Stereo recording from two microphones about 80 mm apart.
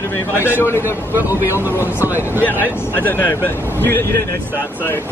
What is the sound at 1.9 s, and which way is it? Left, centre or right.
Speech, right.